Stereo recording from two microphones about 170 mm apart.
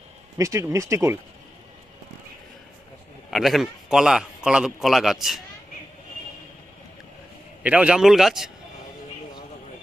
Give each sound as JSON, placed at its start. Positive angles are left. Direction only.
{"t": 0.4, "sound": "speech", "side_deg": -15}
{"t": 3.3, "sound": "a man's voice", "side_deg": 0}
{"t": 7.6, "sound": "a man's voice", "side_deg": -5}